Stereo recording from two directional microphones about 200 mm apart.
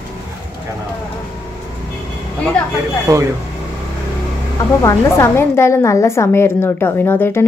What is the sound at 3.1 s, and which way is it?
Speech, 15° right (ahead or behind).